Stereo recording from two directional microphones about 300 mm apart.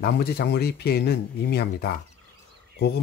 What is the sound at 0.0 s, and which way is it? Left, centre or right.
Speech, left.